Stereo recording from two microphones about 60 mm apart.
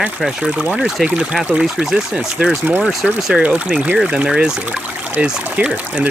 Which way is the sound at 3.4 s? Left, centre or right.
Right.